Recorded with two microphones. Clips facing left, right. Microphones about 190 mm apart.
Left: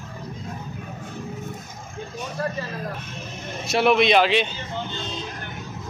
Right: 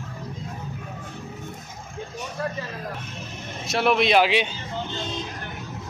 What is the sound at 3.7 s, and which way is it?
Speech, centre (ahead or behind).